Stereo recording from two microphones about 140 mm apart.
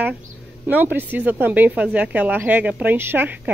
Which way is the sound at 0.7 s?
15° right (ahead or behind).